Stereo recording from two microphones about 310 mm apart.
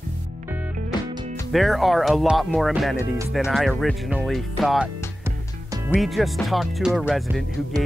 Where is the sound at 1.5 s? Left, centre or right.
Centre.